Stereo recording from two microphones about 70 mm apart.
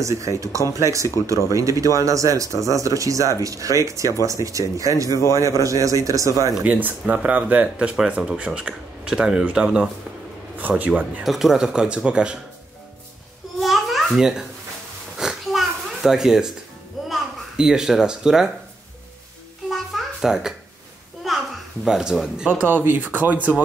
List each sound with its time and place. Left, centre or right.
0.0 s speech: right
6.6 s speech: right
7.9 s speech: centre
11.2 s speech: centre
13.6 s babbling: centre
15.1 s a sound: centre
17.1 s a child's voice: centre
19.7 s a sound: centre
21.8 s speech: centre
22.5 s speech: right